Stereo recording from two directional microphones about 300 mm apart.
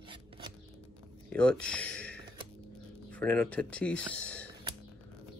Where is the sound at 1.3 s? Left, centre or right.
Centre.